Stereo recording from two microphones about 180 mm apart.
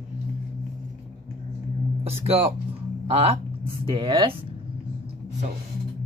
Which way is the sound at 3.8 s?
25° right (ahead or behind).